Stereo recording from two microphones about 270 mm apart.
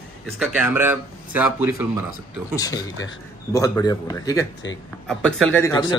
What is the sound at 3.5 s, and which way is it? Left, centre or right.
Speech, centre.